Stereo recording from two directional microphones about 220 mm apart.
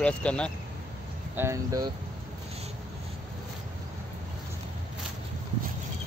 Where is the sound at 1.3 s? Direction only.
15° right (ahead or behind).